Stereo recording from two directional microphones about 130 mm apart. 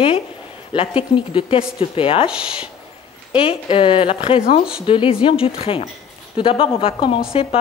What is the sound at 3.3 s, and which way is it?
Speech, 45° left (ahead or behind).